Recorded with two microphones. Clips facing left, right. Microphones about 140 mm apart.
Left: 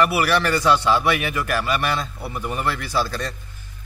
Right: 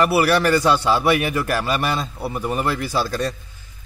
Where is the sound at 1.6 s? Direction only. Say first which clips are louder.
Right 1 dB; 35° right (ahead or behind).